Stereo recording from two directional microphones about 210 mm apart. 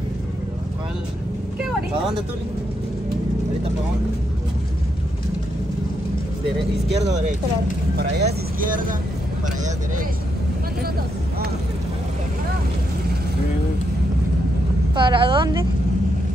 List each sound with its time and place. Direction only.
7.0 s speech: 35° right (ahead or behind)
7.9 s speech: 50° right (ahead or behind)
15.0 s a woman's voice: 20° right (ahead or behind)